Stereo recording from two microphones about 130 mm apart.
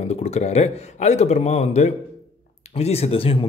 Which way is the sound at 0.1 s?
55° left (ahead or behind).